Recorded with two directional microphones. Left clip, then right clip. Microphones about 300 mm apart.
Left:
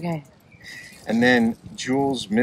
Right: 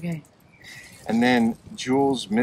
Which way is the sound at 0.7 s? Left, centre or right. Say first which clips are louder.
Left 1 dB; centre.